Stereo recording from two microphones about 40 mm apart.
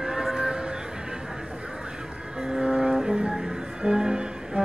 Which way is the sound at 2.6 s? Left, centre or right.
Centre.